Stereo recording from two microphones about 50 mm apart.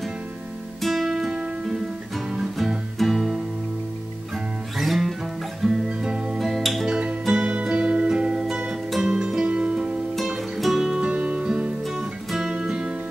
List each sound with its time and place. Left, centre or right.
0.7 s music: centre
4.7 s music: centre
5.9 s music: centre
6.3 s music: centre
6.9 s music: centre
10.1 s music: centre
11.0 s music: right
12.3 s music: centre